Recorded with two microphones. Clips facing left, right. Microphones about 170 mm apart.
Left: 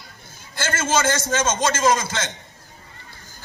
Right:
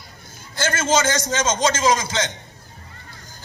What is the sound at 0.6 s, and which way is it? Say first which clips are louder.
A man's voice: right 2 dB; 15° right (ahead or behind).